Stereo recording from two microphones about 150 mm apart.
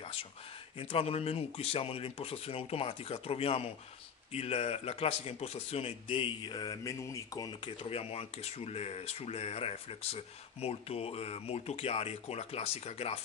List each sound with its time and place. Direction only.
0.0 s a sound: 40° left (ahead or behind)
0.7 s speech: 40° left (ahead or behind); by 7.7 s 25° left (ahead or behind)
7.8 s speech: 40° left (ahead or behind)